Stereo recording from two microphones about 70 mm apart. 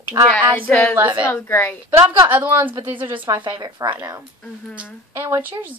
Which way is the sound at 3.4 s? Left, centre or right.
Right.